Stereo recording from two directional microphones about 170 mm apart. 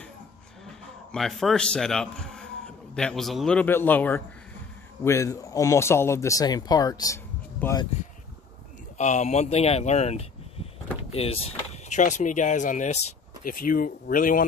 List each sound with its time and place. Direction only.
1.1 s speech: centre (ahead or behind); by 7.9 s 20° left (ahead or behind)
8.9 s speech: 45° left (ahead or behind)
13.4 s speech: 55° left (ahead or behind)